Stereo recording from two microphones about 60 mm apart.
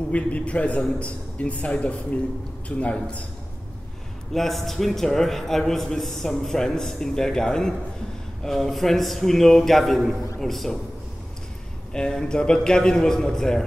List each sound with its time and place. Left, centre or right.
0.1 s a man's voice: left
4.3 s a man's voice: centre
11.9 s a man's voice: centre